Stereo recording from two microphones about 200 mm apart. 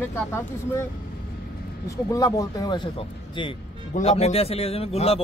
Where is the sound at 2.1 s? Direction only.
15° left (ahead or behind).